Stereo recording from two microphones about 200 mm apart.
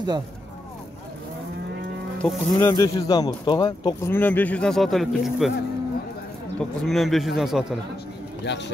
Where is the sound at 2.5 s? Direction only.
15° left (ahead or behind).